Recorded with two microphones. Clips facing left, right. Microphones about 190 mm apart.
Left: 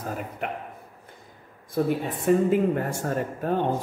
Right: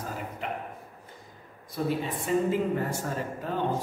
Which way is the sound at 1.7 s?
50° left (ahead or behind).